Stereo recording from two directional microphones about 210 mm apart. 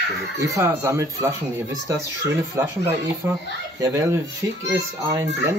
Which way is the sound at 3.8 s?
15° right (ahead or behind).